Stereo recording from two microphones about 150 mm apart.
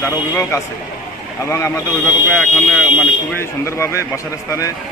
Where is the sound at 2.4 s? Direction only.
Centre (ahead or behind).